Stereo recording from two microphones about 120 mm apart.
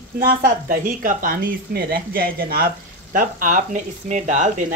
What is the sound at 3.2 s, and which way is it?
Speech, 90° right.